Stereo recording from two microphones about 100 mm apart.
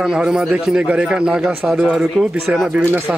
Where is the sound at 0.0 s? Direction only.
5° right (ahead or behind).